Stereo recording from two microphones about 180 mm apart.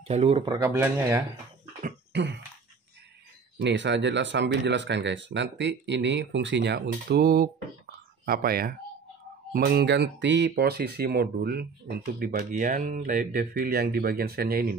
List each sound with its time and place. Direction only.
0.1 s speech: 35° right (ahead or behind)
0.7 s speech: 15° right (ahead or behind)
2.1 s speech: 70° right (ahead or behind)
3.5 s speech: 75° right (ahead or behind); by 14.7 s 60° right (ahead or behind)